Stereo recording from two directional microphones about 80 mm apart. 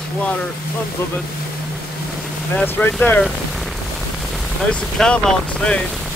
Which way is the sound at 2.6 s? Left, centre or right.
Centre.